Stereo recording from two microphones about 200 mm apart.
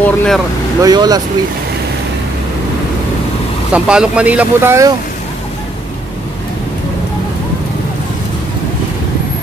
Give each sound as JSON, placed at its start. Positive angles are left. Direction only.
{"t": 0.0, "sound": "speech", "side_deg": 5}
{"t": 0.8, "sound": "speech", "side_deg": -20}
{"t": 3.7, "sound": "speech", "side_deg": -5}